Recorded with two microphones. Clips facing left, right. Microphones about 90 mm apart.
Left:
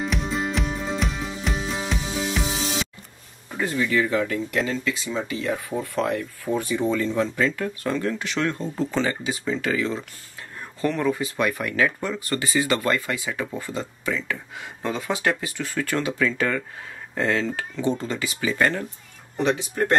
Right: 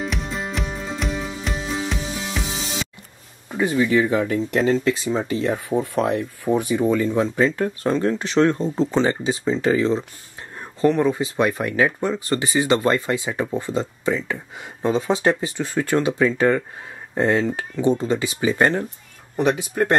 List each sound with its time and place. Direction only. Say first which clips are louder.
0.0 s music: left 1 dB; centre (ahead or behind)
3.5 s speech: right 5 dB; 20° right (ahead or behind)
4.6 s speech: right 8 dB; 40° right (ahead or behind)
5.7 s speech: right 5 dB; 20° right (ahead or behind)
7.4 s speech: right 4 dB; 30° right (ahead or behind)